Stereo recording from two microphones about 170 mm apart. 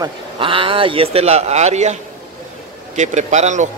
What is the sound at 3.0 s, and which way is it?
Speech, 45° right (ahead or behind).